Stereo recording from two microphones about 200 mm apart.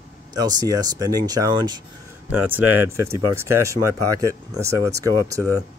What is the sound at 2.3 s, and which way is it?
Speech, 10° right (ahead or behind).